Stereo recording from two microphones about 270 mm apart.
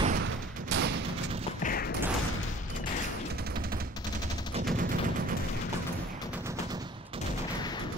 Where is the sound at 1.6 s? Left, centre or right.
Left.